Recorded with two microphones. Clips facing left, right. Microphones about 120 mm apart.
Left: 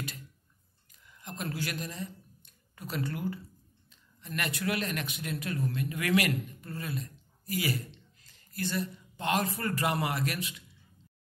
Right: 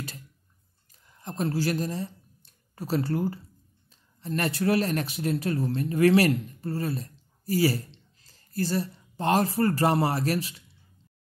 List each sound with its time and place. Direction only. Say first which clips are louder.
1.0 s speech: right 8 dB; 35° right (ahead or behind)